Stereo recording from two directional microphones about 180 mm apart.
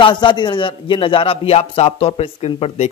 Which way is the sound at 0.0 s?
25° left (ahead or behind).